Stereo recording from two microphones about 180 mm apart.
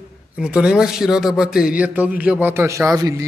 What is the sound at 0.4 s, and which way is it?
Speech, 5° right (ahead or behind).